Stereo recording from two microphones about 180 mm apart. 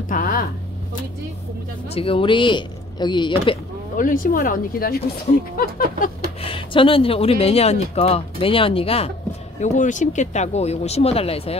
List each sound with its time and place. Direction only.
0.1 s a sound: 50° left (ahead or behind)
2.0 s speech: 30° left (ahead or behind)
3.9 s speech: 50° left (ahead or behind)
6.4 s speech: 30° left (ahead or behind)
9.6 s speech: 45° left (ahead or behind)